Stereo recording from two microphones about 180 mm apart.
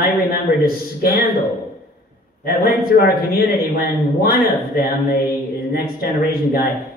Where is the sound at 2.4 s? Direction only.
55° left (ahead or behind).